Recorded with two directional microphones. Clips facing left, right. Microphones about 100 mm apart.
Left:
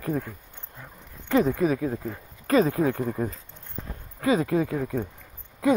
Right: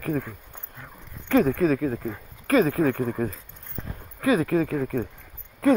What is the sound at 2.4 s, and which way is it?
Speech, 30° left (ahead or behind).